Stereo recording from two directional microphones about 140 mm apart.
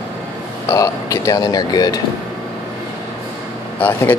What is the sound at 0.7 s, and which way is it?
Speech, 25° left (ahead or behind).